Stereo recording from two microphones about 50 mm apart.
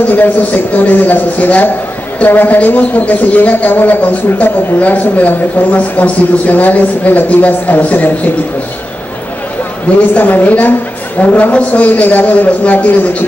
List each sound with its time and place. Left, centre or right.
0.1 s speech: left
9.9 s a man's voice: left